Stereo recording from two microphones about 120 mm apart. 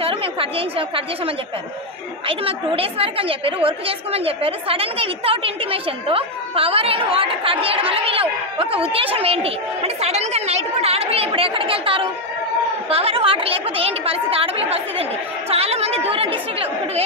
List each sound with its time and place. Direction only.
0.0 s a woman's voice: 50° right (ahead or behind)